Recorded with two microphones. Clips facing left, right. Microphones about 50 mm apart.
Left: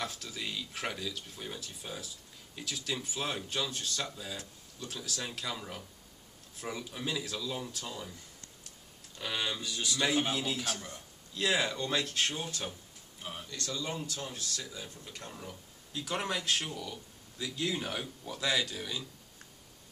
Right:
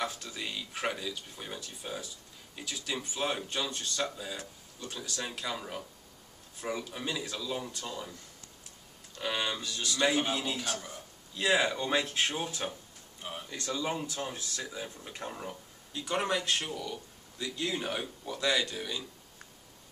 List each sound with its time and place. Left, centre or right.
0.0 s speech: centre
9.2 s speech: centre
9.6 s speech: centre
9.9 s speech: centre
13.5 s speech: centre
15.9 s speech: centre
17.8 s speech: centre
18.2 s speech: centre